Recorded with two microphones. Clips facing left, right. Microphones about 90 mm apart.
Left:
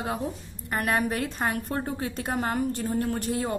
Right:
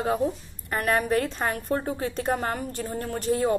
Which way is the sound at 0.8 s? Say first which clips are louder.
Right 4 dB; 10° left (ahead or behind).